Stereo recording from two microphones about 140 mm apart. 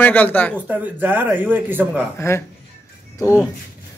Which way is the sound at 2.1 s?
20° left (ahead or behind).